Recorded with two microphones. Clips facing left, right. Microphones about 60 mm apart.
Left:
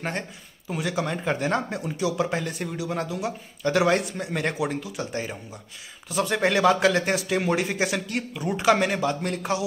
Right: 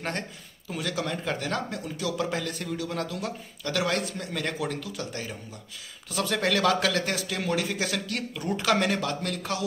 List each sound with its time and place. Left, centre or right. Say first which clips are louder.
0.7 s speech: left 3 dB; centre